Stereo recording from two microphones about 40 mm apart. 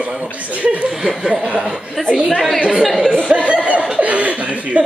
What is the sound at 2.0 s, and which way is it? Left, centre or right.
Speech, centre.